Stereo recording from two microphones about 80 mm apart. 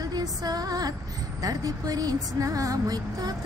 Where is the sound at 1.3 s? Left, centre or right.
Right.